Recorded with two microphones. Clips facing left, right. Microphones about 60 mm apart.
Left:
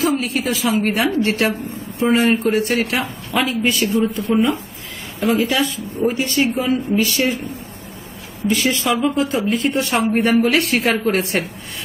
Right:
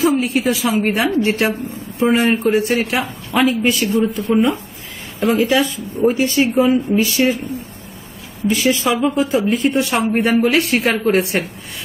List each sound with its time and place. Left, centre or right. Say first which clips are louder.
0.0 s speech: right 3 dB; centre
2.0 s speech: right 1 dB; centre
2.3 s speech: right 2 dB; centre
5.6 s speech: right 2 dB; centre
8.5 s speech: right 2 dB; centre